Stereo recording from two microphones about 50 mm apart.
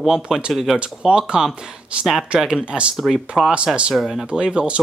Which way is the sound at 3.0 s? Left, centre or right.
Centre.